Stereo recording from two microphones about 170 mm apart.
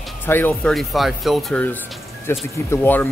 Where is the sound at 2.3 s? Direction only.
15° left (ahead or behind).